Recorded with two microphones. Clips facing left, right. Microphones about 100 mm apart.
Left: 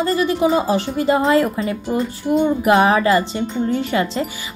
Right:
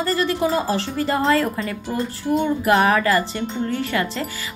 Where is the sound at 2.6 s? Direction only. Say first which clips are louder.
Left 2 dB; 20° left (ahead or behind).